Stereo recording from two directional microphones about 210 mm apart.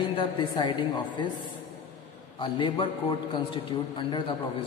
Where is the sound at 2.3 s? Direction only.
20° left (ahead or behind).